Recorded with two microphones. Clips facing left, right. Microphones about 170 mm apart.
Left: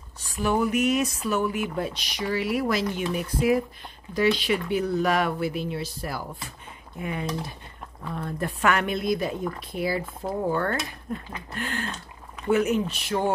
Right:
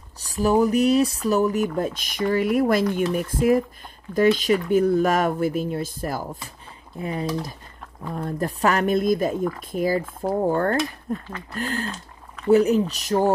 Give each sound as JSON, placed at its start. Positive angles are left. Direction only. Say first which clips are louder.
{"t": 0.2, "sound": "speech", "louder": "right 5 dB", "side_deg": -40}
{"t": 7.0, "sound": "speech", "louder": "right 4 dB", "side_deg": -35}